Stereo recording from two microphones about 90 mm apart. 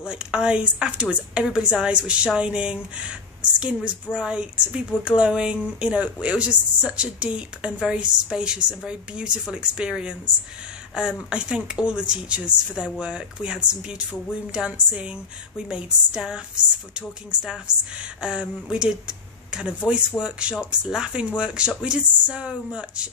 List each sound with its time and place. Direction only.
0.0 s speech: 10° right (ahead or behind)
17.9 s speech: 10° right (ahead or behind)